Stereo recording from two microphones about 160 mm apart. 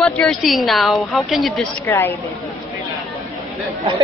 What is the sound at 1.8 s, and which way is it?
Speech, 15° left (ahead or behind).